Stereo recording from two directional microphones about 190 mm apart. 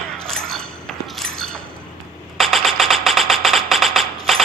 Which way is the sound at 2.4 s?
Centre (ahead or behind).